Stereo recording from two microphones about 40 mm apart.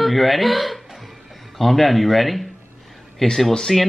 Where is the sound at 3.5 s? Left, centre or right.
Centre.